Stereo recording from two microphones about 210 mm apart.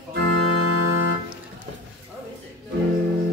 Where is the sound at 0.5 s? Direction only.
90° right.